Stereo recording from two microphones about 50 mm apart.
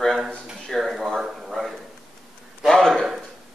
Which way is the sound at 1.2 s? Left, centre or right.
Centre.